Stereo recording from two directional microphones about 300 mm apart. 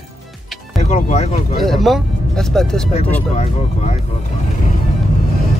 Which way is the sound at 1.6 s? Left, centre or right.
Centre.